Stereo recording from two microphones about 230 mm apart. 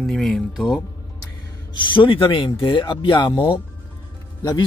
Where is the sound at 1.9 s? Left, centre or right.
Left.